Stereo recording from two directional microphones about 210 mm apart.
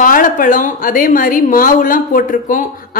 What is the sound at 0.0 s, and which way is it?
A woman's voice, 40° left (ahead or behind).